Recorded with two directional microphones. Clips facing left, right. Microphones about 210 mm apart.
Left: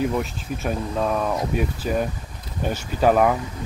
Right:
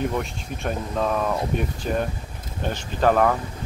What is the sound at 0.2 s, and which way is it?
Speech, 5° left (ahead or behind).